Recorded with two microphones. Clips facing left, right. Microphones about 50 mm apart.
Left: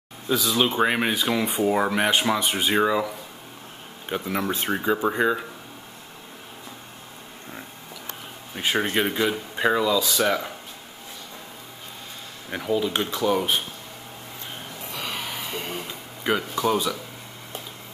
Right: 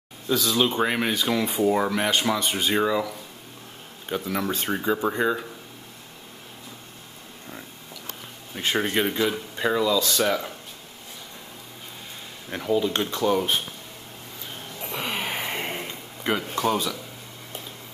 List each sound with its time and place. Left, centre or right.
0.3 s speech: centre
8.5 s speech: centre
12.4 s speech: centre
14.9 s a sound: right
15.9 s a sound: centre
16.5 s speech: centre